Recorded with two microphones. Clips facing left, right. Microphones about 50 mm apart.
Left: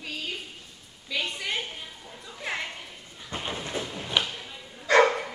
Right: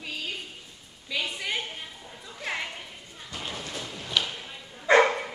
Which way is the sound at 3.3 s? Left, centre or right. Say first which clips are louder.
Left 4 dB; left.